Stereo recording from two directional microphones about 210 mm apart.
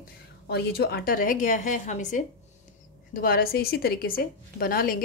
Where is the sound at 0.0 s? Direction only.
50° left (ahead or behind).